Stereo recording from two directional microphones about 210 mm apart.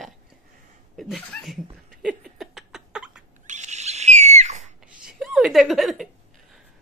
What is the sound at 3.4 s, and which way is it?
Owl, 35° right (ahead or behind).